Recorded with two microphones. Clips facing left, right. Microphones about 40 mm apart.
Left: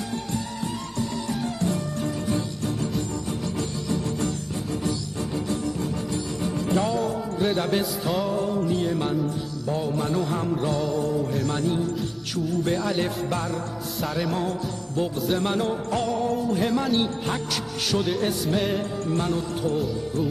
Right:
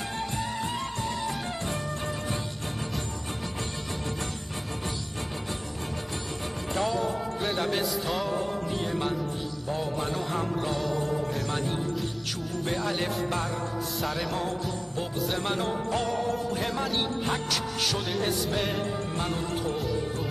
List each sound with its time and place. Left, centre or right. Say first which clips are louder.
0.9 s music: left 3 dB; right
5.3 s music: left 8 dB; right
6.7 s music: left 2 dB; centre
12.6 s music: even; centre
19.0 s music: left 6 dB; centre
19.7 s music: left 3 dB; centre